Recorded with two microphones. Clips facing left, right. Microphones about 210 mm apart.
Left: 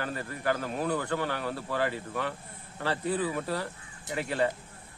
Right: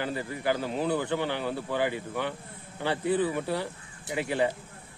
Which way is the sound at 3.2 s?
20° right (ahead or behind).